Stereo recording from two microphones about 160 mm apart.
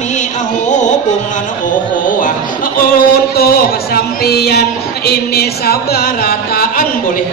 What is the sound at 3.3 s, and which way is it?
Speech, 75° left (ahead or behind).